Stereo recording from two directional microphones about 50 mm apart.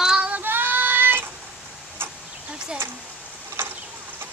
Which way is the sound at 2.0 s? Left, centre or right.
Right.